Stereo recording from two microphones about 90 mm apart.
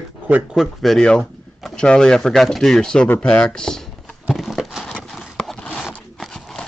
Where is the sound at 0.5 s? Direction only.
Centre (ahead or behind).